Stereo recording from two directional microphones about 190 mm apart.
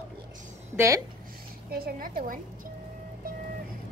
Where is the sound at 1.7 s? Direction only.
50° right (ahead or behind).